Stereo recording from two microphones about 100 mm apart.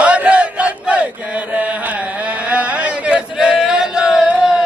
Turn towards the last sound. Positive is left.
turn(degrees=-5)  # may be behind; listen again after turning